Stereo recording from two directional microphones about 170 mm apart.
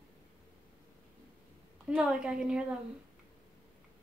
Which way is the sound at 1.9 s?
5° right (ahead or behind).